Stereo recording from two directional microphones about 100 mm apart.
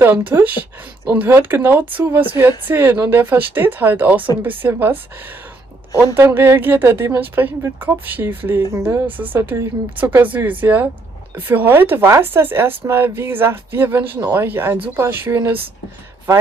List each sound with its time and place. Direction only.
0.0 s speech: 20° right (ahead or behind)
6.1 s speech: 20° right (ahead or behind)